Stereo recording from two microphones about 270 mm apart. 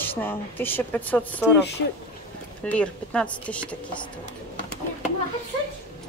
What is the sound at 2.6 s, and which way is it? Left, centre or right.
A woman's voice, centre.